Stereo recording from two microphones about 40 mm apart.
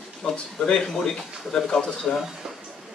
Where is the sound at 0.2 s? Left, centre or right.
Centre.